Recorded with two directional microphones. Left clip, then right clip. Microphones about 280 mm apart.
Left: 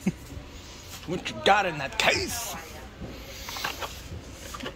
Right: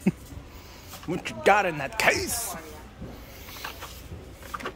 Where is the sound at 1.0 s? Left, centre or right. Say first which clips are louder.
Right 1 dB; centre.